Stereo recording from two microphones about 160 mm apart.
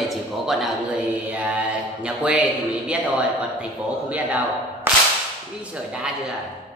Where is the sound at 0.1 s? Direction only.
Centre (ahead or behind).